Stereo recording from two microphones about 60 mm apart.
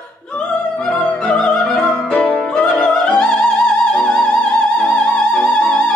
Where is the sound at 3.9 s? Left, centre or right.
Centre.